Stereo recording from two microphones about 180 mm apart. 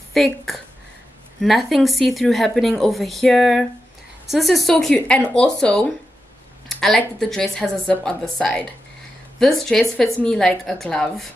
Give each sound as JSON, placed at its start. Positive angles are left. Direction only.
{"t": 0.1, "sound": "a woman's voice", "side_deg": 0}